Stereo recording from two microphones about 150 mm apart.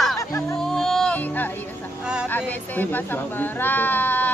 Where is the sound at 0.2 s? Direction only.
20° left (ahead or behind).